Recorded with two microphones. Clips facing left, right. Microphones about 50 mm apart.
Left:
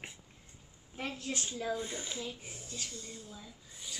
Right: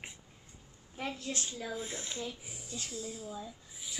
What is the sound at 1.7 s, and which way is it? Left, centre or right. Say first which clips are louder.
A woman's voice: left 1 dB; centre.